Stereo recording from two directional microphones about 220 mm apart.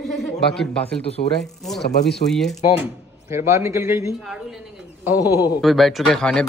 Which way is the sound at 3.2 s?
10° right (ahead or behind).